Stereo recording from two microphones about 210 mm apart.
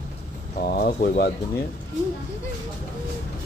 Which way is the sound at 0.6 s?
40° left (ahead or behind).